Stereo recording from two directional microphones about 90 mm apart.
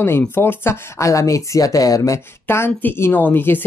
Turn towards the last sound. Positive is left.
turn(degrees=25)  # may be behind; listen again after turning